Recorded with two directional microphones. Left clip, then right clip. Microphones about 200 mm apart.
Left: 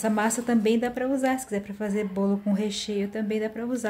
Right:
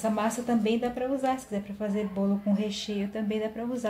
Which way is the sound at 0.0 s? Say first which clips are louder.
Left 3 dB; 35° left (ahead or behind).